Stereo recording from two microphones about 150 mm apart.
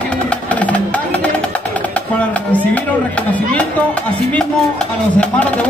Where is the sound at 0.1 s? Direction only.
10° left (ahead or behind).